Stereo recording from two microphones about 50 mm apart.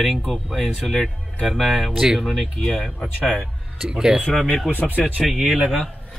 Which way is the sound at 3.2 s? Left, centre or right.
Centre.